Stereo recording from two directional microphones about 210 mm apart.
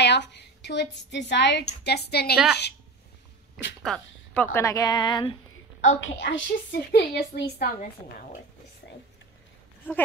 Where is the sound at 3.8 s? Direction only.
5° left (ahead or behind).